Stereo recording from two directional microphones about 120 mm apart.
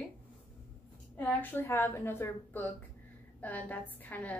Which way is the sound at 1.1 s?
15° left (ahead or behind).